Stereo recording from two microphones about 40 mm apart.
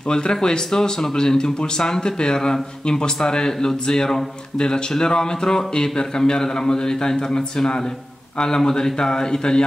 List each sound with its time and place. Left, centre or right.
0.0 s speech: left